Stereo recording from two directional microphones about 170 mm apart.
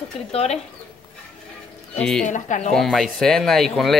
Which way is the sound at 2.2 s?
45° left (ahead or behind).